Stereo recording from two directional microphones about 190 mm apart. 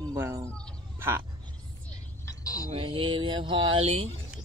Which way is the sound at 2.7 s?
30° right (ahead or behind).